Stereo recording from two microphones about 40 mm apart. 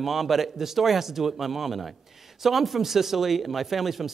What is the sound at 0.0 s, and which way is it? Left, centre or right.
Speech, centre.